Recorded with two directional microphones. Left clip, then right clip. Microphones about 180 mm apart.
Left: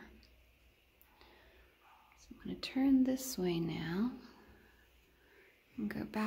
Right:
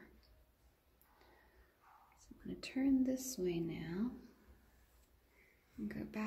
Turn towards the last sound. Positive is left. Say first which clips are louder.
# left 6 dB
turn(degrees=20)  # may be behind; listen again after turning